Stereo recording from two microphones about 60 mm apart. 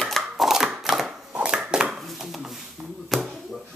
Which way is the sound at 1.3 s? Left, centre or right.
Centre.